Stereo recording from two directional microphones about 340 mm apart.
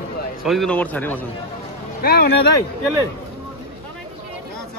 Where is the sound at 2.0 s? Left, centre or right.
Left.